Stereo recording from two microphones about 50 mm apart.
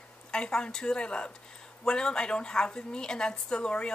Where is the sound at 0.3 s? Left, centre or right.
Centre.